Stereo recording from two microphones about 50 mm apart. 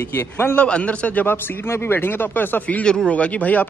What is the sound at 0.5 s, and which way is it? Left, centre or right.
Speech, left.